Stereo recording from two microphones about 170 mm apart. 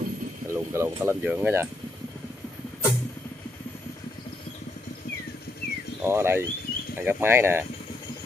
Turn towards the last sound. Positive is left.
turn(degrees=-15)  # may be behind; listen again after turning